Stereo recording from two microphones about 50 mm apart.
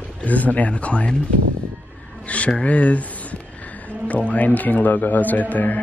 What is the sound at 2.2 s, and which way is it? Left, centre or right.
Speech, left.